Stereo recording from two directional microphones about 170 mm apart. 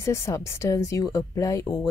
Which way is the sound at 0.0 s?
15° left (ahead or behind).